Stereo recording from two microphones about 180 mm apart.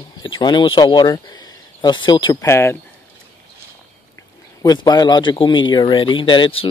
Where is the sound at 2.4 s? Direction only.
15° left (ahead or behind).